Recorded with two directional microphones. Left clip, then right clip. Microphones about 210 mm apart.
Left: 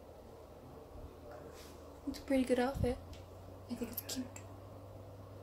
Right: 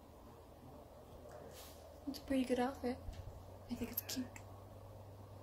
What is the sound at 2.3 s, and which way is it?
Speech, 25° left (ahead or behind).